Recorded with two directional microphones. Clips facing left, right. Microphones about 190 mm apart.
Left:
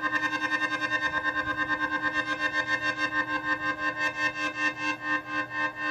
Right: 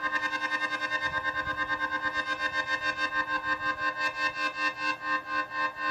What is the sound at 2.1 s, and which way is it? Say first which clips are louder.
Music: left 3 dB; 25° left (ahead or behind).